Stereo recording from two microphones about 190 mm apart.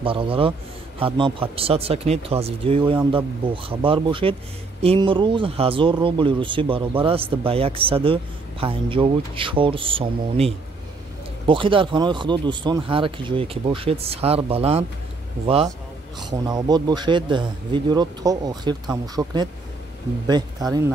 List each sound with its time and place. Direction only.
0.0 s speech: 30° right (ahead or behind)